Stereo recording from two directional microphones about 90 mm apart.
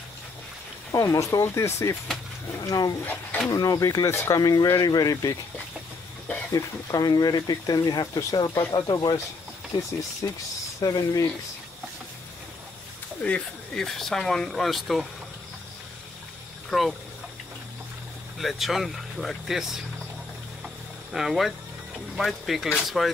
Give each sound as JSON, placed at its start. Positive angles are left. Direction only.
{"t": 0.9, "sound": "speech", "side_deg": 35}
{"t": 4.4, "sound": "speech", "side_deg": 45}
{"t": 6.5, "sound": "speech", "side_deg": 40}
{"t": 10.2, "sound": "speech", "side_deg": 35}
{"t": 13.2, "sound": "speech", "side_deg": 10}
{"t": 16.7, "sound": "speech", "side_deg": 0}
{"t": 18.4, "sound": "speech", "side_deg": 0}
{"t": 20.6, "sound": "a sound", "side_deg": 0}
{"t": 22.1, "sound": "speech", "side_deg": 0}